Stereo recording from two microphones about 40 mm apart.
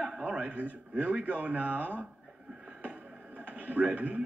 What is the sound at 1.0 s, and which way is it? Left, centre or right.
Speech, right.